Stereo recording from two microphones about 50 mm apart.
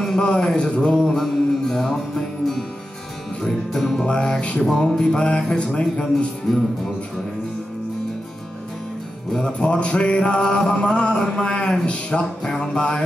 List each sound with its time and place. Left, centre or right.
0.2 s music: left; by 4.0 s centre
4.0 s music: centre
4.6 s music: centre
4.9 s speech: centre
6.5 s music: centre
9.5 s music: left
11.4 s speech: centre